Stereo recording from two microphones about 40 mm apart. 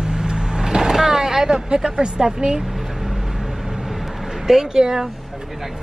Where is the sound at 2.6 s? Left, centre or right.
Centre.